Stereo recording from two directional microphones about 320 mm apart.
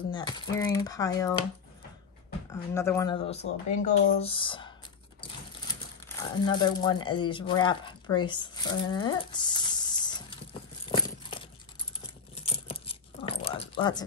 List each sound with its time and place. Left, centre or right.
0.1 s speech: centre
2.7 s speech: centre
6.0 s speech: centre
10.9 s a sound: centre
12.4 s dog: centre